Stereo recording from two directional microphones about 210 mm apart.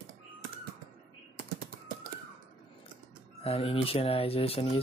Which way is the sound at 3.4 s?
25° left (ahead or behind).